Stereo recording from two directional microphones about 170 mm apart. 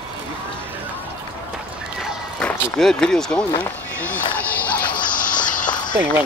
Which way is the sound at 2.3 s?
5° left (ahead or behind).